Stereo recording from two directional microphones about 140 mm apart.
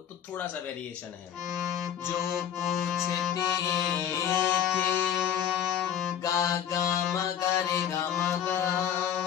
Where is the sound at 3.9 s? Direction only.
15° left (ahead or behind).